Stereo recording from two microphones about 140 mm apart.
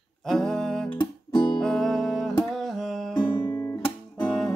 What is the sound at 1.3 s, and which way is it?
Music, 30° left (ahead or behind).